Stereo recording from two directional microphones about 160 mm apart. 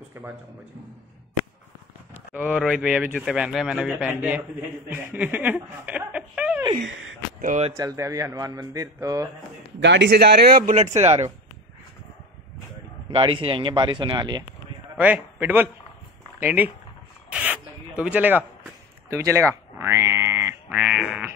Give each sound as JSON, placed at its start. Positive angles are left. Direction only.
{"t": 0.2, "sound": "a man's voice", "side_deg": -15}
{"t": 2.3, "sound": "a man's voice", "side_deg": -5}
{"t": 7.4, "sound": "speech", "side_deg": -45}
{"t": 7.7, "sound": "speech", "side_deg": -20}
{"t": 9.8, "sound": "a man's voice", "side_deg": -90}
{"t": 11.0, "sound": "speech", "side_deg": -40}
{"t": 13.1, "sound": "speech", "side_deg": -35}
{"t": 15.0, "sound": "a man's voice", "side_deg": -10}
{"t": 17.3, "sound": "a sound", "side_deg": -10}